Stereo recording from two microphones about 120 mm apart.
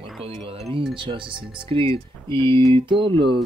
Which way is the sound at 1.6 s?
50° right (ahead or behind).